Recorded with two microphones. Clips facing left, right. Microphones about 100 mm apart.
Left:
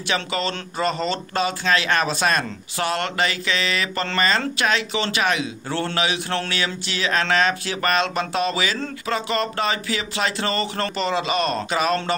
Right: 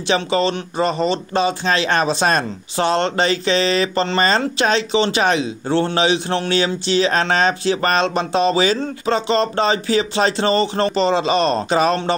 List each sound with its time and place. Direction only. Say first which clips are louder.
0.1 s speech: right 7 dB; 25° right (ahead or behind)